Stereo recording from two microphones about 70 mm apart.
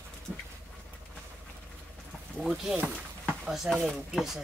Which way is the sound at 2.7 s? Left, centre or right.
Right.